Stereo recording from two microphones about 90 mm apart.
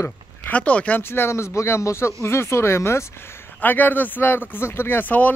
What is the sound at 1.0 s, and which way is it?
Speech, 25° left (ahead or behind).